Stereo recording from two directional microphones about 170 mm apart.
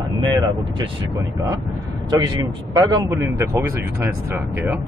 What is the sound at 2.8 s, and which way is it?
Speech, 20° right (ahead or behind).